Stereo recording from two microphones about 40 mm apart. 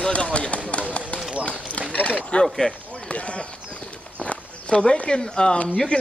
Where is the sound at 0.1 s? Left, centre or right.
Left.